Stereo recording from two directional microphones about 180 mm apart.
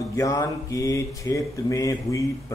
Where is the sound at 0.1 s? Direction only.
20° left (ahead or behind).